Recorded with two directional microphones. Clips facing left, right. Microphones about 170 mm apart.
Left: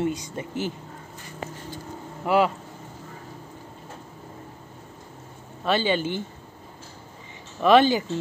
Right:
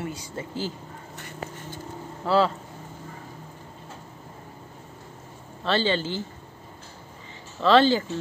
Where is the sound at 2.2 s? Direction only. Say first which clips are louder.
Left 1 dB; 15° left (ahead or behind).